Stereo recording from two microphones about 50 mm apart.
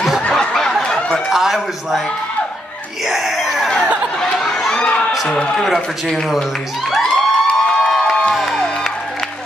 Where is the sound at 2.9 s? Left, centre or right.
Centre.